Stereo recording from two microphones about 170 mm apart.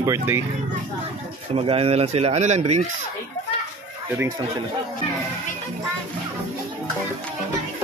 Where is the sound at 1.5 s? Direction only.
35° right (ahead or behind).